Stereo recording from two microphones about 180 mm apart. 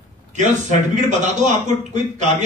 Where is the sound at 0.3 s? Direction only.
40° right (ahead or behind).